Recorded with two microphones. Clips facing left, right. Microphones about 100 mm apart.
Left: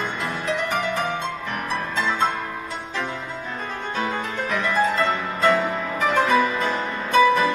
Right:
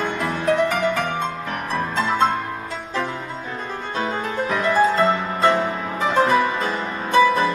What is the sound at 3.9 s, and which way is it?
Music, 30° right (ahead or behind).